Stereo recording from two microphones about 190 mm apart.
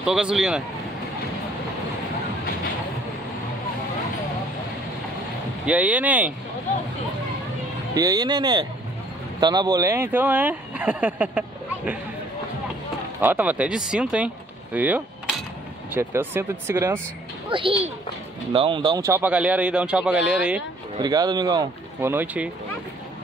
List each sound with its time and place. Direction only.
0.0 s speech: 5° right (ahead or behind)
5.7 s speech: 10° right (ahead or behind)
7.9 s speech: 20° right (ahead or behind)
13.2 s speech: 10° right (ahead or behind)
17.5 s a child's voice: 25° right (ahead or behind); by 20.6 s 5° right (ahead or behind)
21.0 s speech: 20° right (ahead or behind)
22.1 s speech: 10° right (ahead or behind)